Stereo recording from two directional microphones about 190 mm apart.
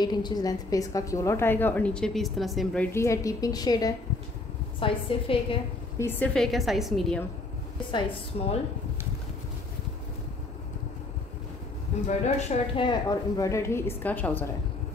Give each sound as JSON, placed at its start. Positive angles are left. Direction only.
{"t": 0.0, "sound": "a woman's voice", "side_deg": 20}
{"t": 5.9, "sound": "a woman's voice", "side_deg": 10}
{"t": 7.9, "sound": "a woman's voice", "side_deg": 30}
{"t": 12.1, "sound": "a woman's voice", "side_deg": 35}